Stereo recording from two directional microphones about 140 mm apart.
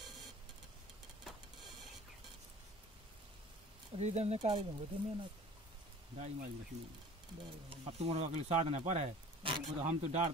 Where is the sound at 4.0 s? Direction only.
50° right (ahead or behind).